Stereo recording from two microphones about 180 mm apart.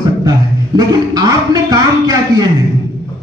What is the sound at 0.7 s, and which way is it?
A man's voice, 20° right (ahead or behind).